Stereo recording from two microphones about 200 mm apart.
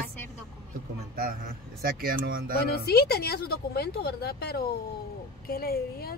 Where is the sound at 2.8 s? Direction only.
55° left (ahead or behind).